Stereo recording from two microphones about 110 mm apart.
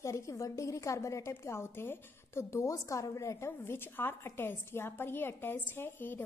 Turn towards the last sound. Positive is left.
turn(degrees=20)  # may be behind; listen again after turning